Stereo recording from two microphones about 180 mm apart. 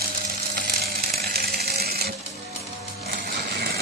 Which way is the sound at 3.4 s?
60° right (ahead or behind).